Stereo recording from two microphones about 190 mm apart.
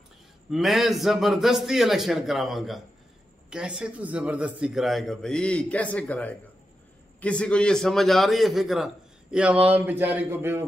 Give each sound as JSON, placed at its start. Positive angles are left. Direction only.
{"t": 0.5, "sound": "a man's voice", "side_deg": 0}